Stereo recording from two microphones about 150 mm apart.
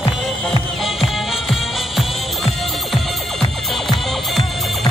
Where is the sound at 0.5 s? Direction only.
Centre (ahead or behind).